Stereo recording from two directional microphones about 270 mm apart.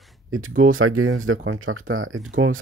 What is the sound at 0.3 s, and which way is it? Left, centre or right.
Speech, right.